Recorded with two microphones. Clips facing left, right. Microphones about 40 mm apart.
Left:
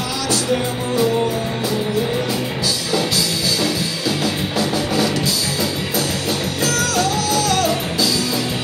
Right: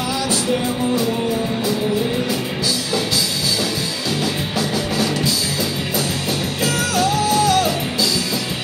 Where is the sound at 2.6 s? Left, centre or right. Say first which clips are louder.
Left 1 dB; centre.